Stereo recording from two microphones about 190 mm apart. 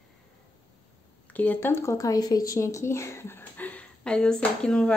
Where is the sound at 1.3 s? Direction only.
10° left (ahead or behind).